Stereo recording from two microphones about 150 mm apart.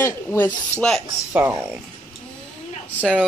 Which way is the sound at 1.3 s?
15° right (ahead or behind).